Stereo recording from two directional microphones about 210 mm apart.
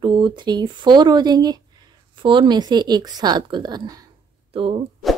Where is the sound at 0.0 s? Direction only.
20° right (ahead or behind).